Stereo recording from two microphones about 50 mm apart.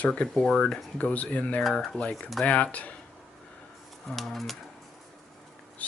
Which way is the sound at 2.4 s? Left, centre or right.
Left.